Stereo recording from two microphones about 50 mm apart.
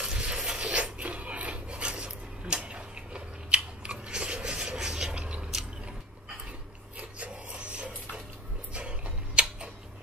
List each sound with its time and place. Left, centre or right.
0.0 s filing: centre
7.0 s a sound: right
8.7 s tick-tock: right